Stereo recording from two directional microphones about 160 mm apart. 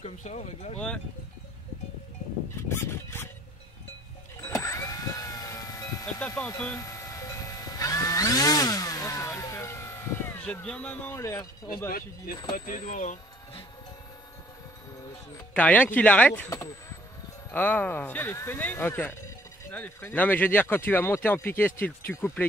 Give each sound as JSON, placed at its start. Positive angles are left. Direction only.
{"t": 0.0, "sound": "speech", "side_deg": 45}
{"t": 0.7, "sound": "speech", "side_deg": 5}
{"t": 2.7, "sound": "chicken", "side_deg": 15}
{"t": 4.4, "sound": "a sound", "side_deg": 20}
{"t": 6.2, "sound": "speech", "side_deg": 10}
{"t": 6.8, "sound": "chainsaw", "side_deg": 20}
{"t": 12.5, "sound": "speech", "side_deg": 55}
{"t": 15.5, "sound": "speech", "side_deg": 10}